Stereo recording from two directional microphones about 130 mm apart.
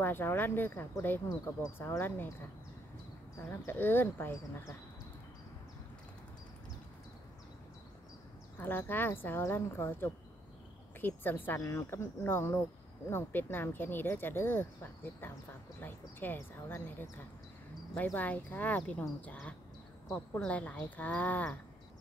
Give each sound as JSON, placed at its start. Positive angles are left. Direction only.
{"t": 0.0, "sound": "speech", "side_deg": 15}
{"t": 3.6, "sound": "speech", "side_deg": 15}
{"t": 8.5, "sound": "speech", "side_deg": 15}